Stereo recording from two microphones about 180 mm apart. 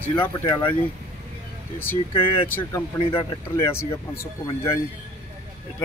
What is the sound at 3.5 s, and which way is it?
Speech, 15° left (ahead or behind).